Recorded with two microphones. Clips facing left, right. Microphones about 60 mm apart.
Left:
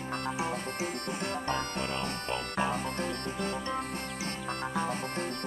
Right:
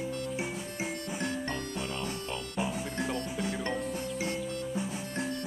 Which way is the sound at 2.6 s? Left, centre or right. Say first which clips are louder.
Left 1 dB; left.